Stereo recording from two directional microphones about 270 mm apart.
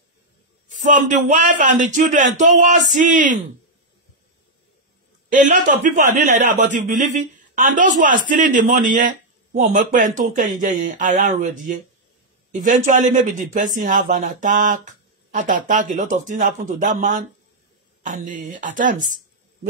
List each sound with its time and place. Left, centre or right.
0.8 s speech: right
5.5 s speech: right